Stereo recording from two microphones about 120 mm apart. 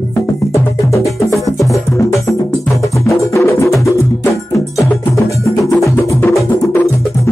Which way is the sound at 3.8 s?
25° left (ahead or behind).